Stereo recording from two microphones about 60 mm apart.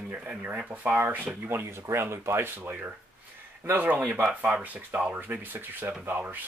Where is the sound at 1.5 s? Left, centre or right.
Right.